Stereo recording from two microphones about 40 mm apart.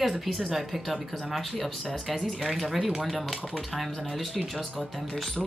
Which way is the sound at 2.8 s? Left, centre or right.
Centre.